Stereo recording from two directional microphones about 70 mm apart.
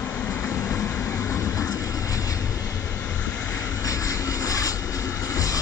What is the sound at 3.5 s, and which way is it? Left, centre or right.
Vehicle, left.